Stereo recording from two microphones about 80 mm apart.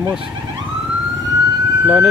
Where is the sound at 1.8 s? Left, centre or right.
Centre.